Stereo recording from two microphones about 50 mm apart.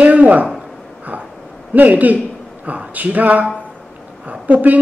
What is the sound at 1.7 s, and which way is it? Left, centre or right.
A woman's voice, right.